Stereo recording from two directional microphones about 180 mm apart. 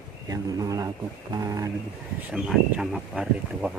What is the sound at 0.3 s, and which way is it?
Speech, 20° right (ahead or behind).